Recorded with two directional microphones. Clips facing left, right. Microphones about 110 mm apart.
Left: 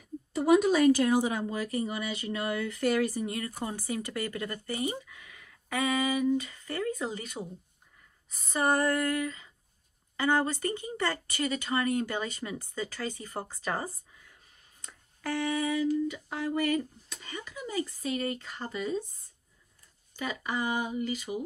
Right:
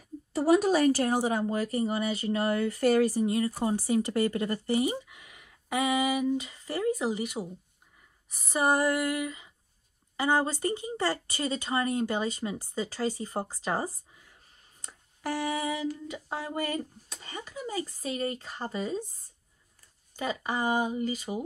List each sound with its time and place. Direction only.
0.3 s a woman's voice: 40° right (ahead or behind)
3.3 s speech: 25° right (ahead or behind)
4.3 s speech: 30° right (ahead or behind); by 7.4 s 15° right (ahead or behind)
8.4 s a sound: 10° right (ahead or behind)
10.1 s speech: 20° right (ahead or behind)
15.9 s a woman's voice: 35° right (ahead or behind)
20.4 s a woman's voice: 40° right (ahead or behind)